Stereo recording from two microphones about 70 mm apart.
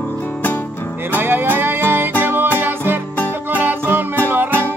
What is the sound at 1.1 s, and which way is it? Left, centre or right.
Music, right.